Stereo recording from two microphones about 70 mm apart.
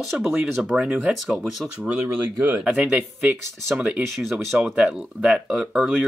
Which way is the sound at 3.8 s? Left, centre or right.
Centre.